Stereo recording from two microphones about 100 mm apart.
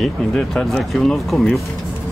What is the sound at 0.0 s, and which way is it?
Speech, 5° left (ahead or behind).